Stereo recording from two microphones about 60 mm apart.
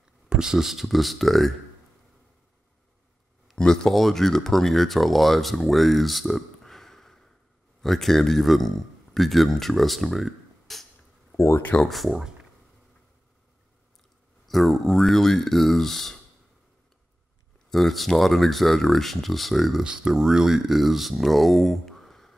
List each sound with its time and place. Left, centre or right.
0.3 s speech: centre
3.5 s speech: centre
11.3 s speech: left
11.8 s speech: centre
14.5 s speech: centre
17.6 s speech: centre
19.8 s speech: centre